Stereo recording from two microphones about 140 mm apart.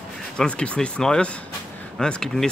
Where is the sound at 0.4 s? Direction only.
10° left (ahead or behind).